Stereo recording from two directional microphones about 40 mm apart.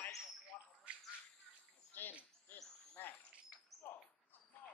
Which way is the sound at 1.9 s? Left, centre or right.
Left.